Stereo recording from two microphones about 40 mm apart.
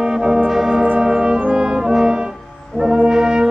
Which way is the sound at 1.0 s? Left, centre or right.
Right.